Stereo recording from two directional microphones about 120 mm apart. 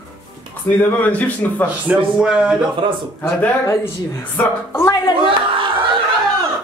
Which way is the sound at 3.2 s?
20° left (ahead or behind).